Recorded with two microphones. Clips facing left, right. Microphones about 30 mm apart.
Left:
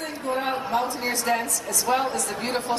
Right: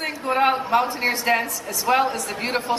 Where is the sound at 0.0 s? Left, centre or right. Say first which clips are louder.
Right 7 dB; right; by 2.8 s centre.